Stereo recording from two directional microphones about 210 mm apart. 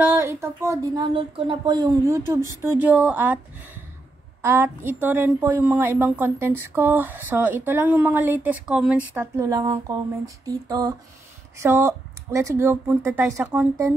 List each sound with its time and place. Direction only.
0.0 s speech: 10° right (ahead or behind)
1.1 s speech: 25° right (ahead or behind)